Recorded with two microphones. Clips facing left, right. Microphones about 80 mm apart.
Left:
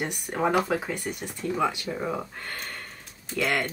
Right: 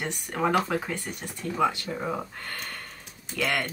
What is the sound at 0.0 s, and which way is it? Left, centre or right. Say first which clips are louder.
Speech: left 1 dB; centre.